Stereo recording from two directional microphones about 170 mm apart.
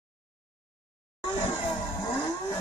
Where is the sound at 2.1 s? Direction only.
20° left (ahead or behind).